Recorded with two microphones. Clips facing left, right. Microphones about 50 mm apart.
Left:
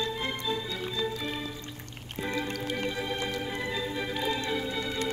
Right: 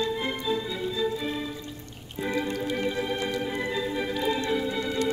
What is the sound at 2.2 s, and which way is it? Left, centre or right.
Organ, centre.